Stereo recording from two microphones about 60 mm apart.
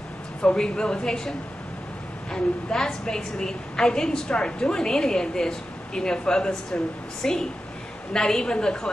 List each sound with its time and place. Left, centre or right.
0.4 s a woman's voice: centre
2.3 s a woman's voice: centre